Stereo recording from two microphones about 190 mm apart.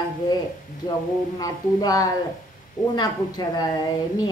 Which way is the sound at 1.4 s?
20° left (ahead or behind).